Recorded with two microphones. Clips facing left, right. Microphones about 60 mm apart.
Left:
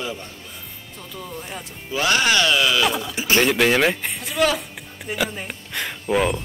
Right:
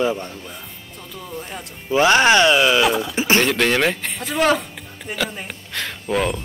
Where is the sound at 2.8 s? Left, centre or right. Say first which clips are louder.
Right 3 dB; centre.